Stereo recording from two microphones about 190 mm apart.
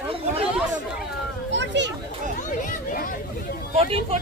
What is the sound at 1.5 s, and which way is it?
Children playing, 70° right (ahead or behind).